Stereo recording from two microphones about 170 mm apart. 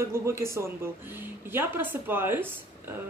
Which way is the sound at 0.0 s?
15° right (ahead or behind).